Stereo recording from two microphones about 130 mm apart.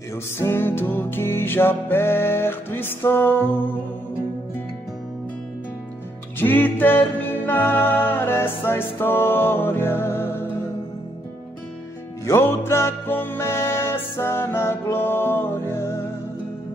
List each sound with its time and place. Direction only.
0.4 s music: 20° left (ahead or behind)
6.4 s music: 15° left (ahead or behind)
12.3 s music: 20° left (ahead or behind)